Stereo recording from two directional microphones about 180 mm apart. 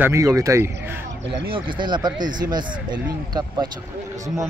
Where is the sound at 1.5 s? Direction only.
25° right (ahead or behind).